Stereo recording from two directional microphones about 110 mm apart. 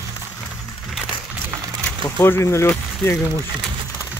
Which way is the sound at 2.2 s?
25° left (ahead or behind).